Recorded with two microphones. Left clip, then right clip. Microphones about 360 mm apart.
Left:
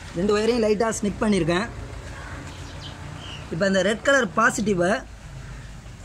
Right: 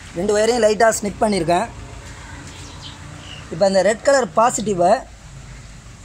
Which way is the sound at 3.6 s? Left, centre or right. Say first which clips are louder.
Right 6 dB; centre.